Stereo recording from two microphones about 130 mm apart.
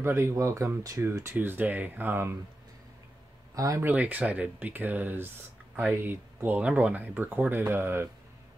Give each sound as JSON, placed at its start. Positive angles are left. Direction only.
{"t": 0.0, "sound": "speech", "side_deg": -20}
{"t": 3.5, "sound": "speech", "side_deg": -25}
{"t": 3.9, "sound": "speech", "side_deg": -10}